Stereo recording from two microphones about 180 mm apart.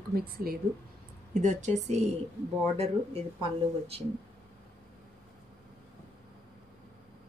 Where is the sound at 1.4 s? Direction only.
40° right (ahead or behind).